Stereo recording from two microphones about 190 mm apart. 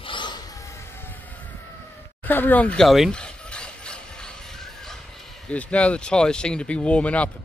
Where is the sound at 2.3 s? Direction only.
10° left (ahead or behind).